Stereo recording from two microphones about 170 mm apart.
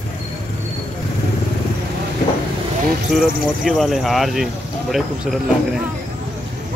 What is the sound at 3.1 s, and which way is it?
Speech, centre (ahead or behind).